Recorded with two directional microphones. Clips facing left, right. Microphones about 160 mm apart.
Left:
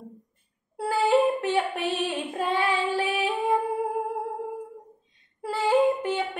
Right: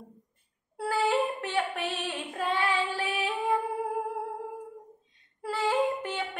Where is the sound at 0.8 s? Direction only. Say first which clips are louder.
Left 5 dB; 15° left (ahead or behind).